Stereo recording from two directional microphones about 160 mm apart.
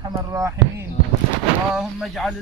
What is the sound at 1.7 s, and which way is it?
Speech, centre (ahead or behind).